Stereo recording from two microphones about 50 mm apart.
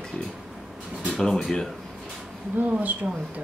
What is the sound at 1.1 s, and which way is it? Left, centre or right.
Speech, centre.